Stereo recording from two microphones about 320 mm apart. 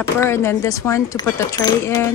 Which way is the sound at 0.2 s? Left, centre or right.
Centre.